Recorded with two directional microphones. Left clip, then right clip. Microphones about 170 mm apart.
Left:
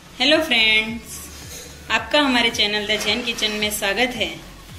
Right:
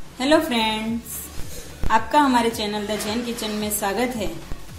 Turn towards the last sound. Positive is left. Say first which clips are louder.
# left 3 dB
turn(degrees=-45)  # may be behind; listen again after turning